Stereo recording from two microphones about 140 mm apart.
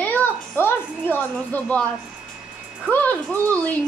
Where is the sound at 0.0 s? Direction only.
15° left (ahead or behind).